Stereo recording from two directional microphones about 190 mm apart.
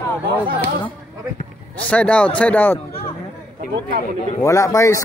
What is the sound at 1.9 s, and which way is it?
Speech, 5° left (ahead or behind).